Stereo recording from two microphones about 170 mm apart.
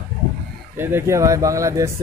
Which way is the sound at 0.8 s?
15° right (ahead or behind).